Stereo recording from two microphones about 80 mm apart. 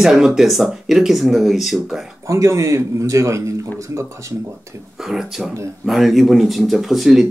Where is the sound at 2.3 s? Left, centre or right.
Right.